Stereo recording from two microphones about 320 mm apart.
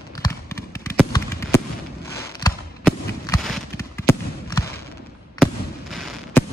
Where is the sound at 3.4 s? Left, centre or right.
Centre.